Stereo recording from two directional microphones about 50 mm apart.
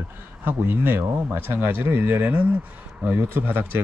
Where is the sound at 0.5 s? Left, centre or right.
Right.